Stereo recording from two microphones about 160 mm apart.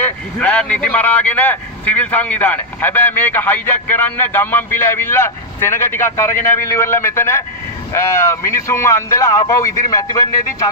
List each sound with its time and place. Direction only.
0.0 s speech: 10° left (ahead or behind)